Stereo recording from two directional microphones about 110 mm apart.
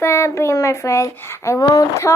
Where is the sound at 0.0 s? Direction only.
25° left (ahead or behind).